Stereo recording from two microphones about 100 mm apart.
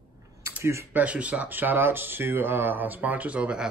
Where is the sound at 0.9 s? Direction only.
15° right (ahead or behind).